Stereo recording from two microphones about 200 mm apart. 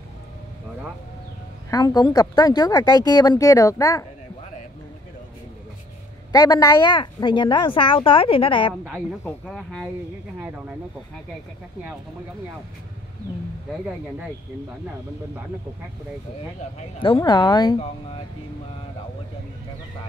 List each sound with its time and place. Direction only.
1.7 s speech: 20° left (ahead or behind)
6.3 s speech: 20° left (ahead or behind)
9.2 s speech: 5° left (ahead or behind)
13.7 s speech: 5° right (ahead or behind)
17.0 s speech: 25° left (ahead or behind)